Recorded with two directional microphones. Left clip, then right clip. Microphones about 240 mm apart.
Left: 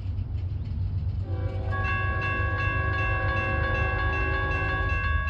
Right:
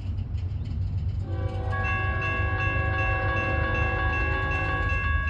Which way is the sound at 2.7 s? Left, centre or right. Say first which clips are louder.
Right 1 dB; centre.